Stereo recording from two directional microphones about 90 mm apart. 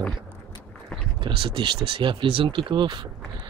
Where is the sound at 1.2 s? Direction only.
80° right.